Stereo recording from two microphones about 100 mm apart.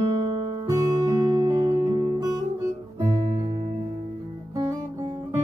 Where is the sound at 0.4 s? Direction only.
55° right (ahead or behind).